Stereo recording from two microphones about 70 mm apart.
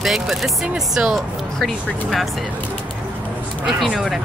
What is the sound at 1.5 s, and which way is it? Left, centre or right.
Speech, centre.